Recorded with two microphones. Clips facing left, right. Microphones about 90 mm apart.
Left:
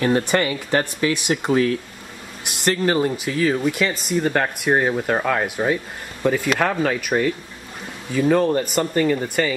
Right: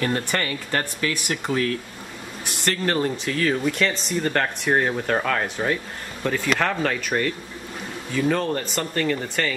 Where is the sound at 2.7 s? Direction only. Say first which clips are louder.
Left 4 dB; 10° left (ahead or behind).